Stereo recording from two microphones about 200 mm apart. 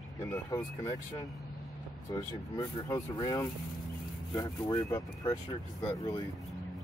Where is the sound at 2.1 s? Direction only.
20° left (ahead or behind).